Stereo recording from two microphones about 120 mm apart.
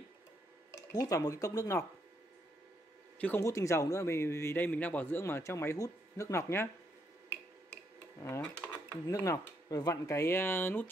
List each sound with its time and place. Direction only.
0.7 s speech: 30° left (ahead or behind)
3.2 s speech: 15° left (ahead or behind)
3.4 s a man's voice: 25° left (ahead or behind)
8.2 s a man's voice: 30° left (ahead or behind)